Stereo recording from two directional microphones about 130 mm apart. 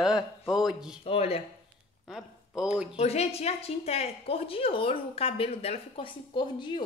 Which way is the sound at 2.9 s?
55° left (ahead or behind).